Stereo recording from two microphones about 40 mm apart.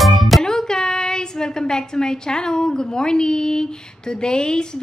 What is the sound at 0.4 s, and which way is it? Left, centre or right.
A woman's voice, centre.